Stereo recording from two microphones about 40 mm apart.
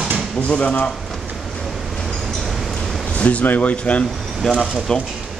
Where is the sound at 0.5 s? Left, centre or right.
Left.